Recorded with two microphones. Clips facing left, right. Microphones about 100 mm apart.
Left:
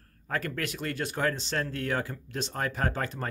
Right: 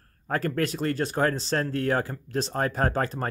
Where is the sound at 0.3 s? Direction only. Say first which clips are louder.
Right 6 dB; 35° right (ahead or behind).